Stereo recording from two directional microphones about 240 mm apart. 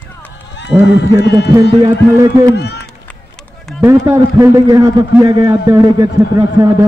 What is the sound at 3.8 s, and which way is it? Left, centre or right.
A man's voice, centre.